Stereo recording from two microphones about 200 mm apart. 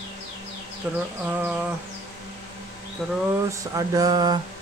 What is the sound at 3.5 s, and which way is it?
Speech, 15° right (ahead or behind).